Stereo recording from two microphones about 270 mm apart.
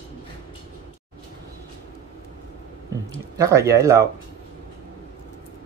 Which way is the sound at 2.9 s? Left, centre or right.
Centre.